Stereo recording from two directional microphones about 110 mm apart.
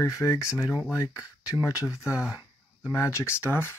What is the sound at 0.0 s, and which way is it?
Speech, 25° left (ahead or behind).